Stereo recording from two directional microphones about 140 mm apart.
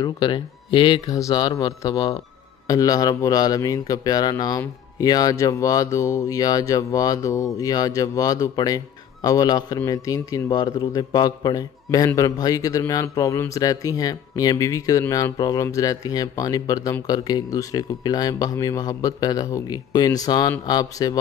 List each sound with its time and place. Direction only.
0.0 s a man's voice: 35° left (ahead or behind)